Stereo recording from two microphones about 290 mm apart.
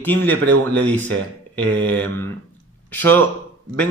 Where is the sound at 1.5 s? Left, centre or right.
Centre.